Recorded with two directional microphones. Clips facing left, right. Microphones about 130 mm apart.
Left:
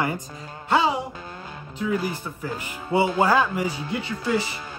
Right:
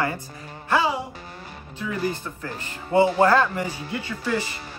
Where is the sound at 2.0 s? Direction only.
15° left (ahead or behind).